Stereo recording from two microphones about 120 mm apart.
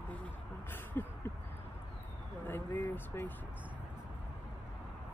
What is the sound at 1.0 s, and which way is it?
Speech, 15° left (ahead or behind).